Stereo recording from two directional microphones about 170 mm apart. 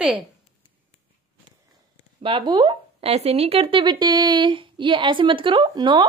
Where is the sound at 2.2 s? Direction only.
30° right (ahead or behind).